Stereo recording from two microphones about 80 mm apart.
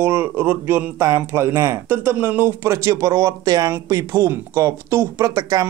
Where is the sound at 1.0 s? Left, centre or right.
Right.